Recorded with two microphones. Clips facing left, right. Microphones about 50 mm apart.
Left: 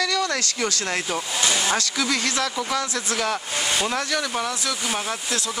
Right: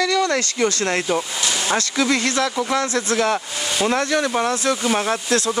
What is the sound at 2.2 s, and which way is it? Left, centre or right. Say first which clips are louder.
Speech: right 4 dB; right.